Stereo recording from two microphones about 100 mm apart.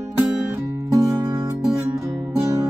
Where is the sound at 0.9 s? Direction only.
30° right (ahead or behind).